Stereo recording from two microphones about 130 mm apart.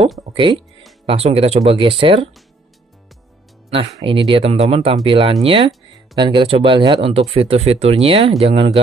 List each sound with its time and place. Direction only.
0.3 s speech: 40° right (ahead or behind)
3.7 s speech: 45° right (ahead or behind)